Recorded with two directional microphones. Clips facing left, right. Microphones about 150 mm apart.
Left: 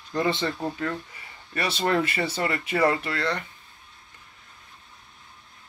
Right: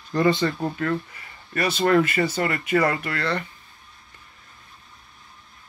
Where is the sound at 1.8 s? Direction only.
25° left (ahead or behind).